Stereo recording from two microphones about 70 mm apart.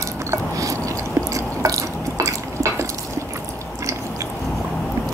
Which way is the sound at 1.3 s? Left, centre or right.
Right.